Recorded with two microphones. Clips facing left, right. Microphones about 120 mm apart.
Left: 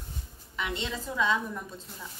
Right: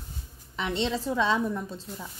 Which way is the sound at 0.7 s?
35° right (ahead or behind).